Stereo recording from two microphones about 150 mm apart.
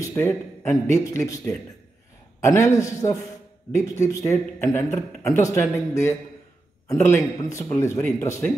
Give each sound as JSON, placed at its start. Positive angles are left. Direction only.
{"t": 0.0, "sound": "speech", "side_deg": 20}